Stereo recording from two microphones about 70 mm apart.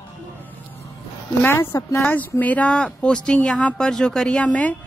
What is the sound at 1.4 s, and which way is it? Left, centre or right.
Speech, left.